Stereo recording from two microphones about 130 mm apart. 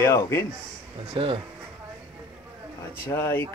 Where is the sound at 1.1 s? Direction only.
40° right (ahead or behind).